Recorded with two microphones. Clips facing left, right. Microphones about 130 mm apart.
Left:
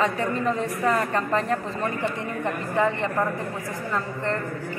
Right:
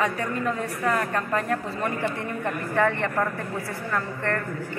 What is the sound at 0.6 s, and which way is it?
Speech, 5° left (ahead or behind).